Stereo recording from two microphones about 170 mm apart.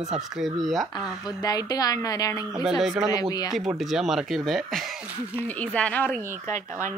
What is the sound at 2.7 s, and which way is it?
Speech, centre (ahead or behind).